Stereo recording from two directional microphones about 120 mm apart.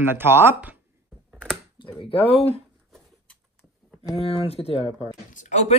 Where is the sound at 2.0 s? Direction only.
50° left (ahead or behind).